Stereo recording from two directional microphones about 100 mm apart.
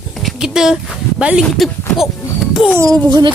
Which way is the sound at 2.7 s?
35° right (ahead or behind).